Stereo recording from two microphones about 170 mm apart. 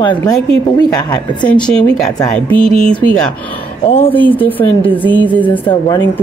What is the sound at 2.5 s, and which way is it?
Speech, 30° right (ahead or behind).